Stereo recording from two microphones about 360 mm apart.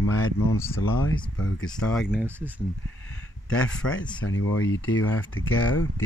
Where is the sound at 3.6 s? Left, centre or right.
Centre.